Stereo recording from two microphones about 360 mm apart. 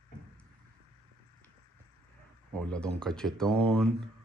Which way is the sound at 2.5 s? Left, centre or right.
Centre.